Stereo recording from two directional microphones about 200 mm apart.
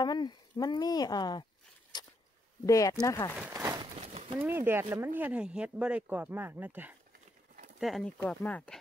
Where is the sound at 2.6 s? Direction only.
15° left (ahead or behind).